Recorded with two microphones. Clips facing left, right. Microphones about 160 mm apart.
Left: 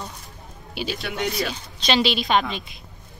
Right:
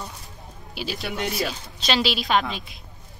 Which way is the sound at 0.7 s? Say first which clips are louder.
Left 2 dB; centre (ahead or behind).